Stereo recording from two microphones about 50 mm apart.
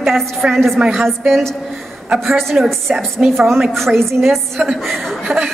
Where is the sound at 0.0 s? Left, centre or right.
Centre.